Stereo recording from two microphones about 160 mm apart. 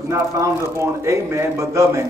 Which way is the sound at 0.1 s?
20° right (ahead or behind).